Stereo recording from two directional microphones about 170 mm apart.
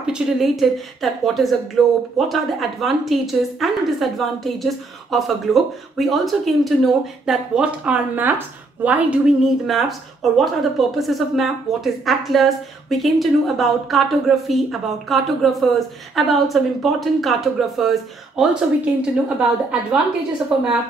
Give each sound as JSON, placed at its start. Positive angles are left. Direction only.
{"t": 0.0, "sound": "a woman's voice", "side_deg": 0}